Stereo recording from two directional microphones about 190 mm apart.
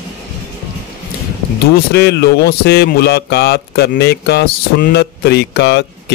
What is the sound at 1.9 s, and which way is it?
Speech, 60° left (ahead or behind).